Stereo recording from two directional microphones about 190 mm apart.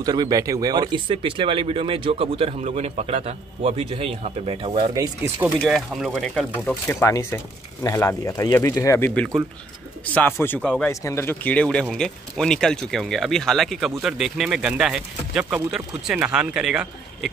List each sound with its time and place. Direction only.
0.0 s speech: 20° right (ahead or behind)
4.9 s speech: 15° right (ahead or behind)
5.6 s speech: centre (ahead or behind)
10.4 s speech: 10° left (ahead or behind)